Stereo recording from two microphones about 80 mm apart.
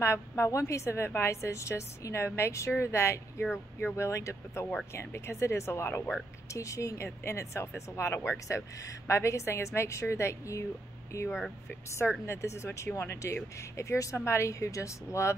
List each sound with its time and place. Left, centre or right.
0.0 s a woman's voice: left